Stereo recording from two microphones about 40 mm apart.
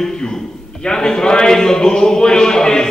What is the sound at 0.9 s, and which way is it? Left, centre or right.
A man's voice, centre.